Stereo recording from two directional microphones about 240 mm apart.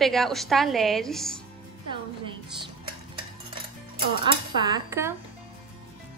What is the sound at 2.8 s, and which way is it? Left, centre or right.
Cutlery, right.